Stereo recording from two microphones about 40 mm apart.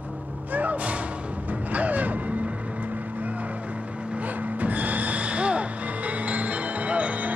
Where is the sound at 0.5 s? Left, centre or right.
Right.